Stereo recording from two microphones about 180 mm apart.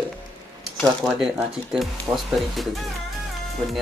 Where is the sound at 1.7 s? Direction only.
Centre (ahead or behind).